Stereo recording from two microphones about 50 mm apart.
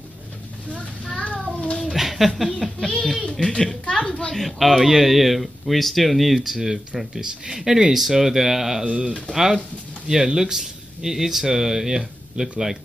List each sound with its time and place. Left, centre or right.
1.4 s a sound: left
1.9 s a sound: centre
3.0 s a woman's voice: centre
4.3 s speech: centre
8.8 s speech: right
9.3 s speech: centre